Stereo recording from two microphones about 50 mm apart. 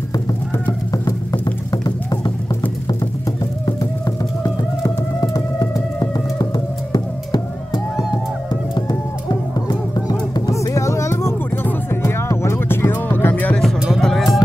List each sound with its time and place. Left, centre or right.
10.6 s music: left
14.0 s music: centre